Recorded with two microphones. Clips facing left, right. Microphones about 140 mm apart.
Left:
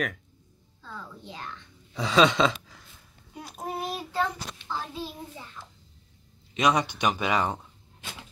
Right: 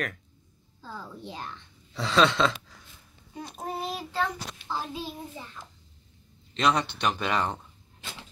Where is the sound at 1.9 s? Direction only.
10° left (ahead or behind).